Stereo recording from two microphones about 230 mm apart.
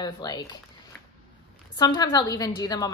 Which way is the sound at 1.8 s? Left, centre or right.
Centre.